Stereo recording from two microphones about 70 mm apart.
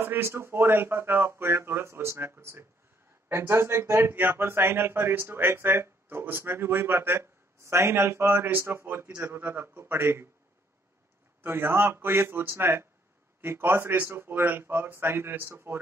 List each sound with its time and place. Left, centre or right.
0.0 s speech: right
11.4 s speech: right